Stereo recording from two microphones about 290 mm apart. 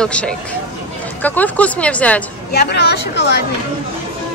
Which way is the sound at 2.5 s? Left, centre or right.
Left.